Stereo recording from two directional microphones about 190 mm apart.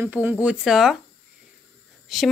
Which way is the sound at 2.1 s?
Centre (ahead or behind).